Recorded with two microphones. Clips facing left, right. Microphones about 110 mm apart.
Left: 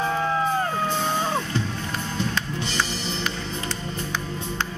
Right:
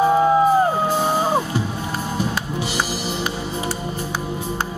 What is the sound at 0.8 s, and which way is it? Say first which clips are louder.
Music: right 5 dB; 10° right (ahead or behind).